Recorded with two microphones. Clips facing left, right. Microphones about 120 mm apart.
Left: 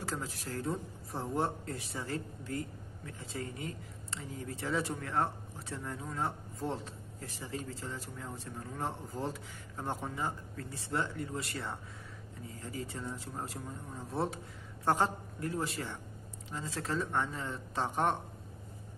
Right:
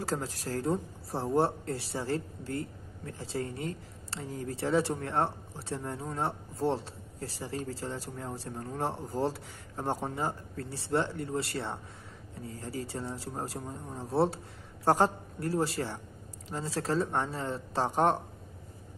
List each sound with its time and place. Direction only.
0.0 s speech: 35° right (ahead or behind)